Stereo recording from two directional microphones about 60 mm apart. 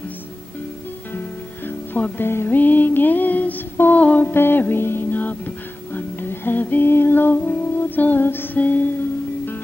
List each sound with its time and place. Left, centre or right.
2.0 s music: left
2.2 s music: left
4.3 s music: left
8.5 s music: left